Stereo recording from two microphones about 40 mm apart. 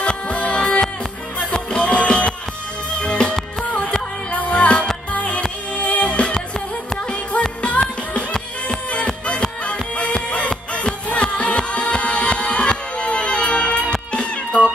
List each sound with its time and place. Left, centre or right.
0.0 s music: left
4.3 s music: left
8.3 s music: left